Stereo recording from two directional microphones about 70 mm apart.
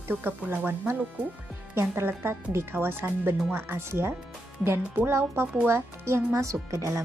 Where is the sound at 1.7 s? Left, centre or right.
Right.